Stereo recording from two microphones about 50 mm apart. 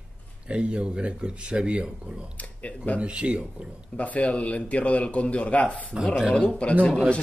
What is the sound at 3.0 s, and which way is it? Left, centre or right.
Speech, right.